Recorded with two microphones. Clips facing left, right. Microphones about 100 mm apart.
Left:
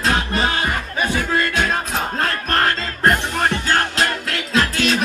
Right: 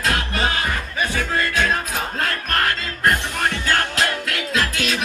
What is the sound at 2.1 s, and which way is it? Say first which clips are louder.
Music: left 3 dB; 30° left (ahead or behind).